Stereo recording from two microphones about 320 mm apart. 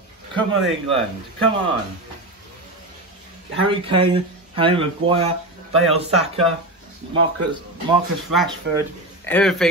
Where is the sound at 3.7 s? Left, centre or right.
Centre.